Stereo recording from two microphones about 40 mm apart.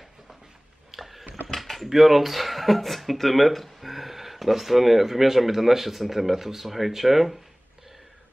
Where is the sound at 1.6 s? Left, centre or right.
Centre.